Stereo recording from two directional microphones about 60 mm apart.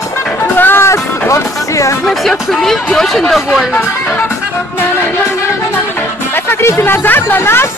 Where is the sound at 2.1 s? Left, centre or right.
Centre.